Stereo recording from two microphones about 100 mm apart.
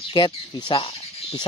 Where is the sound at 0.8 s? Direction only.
80° left.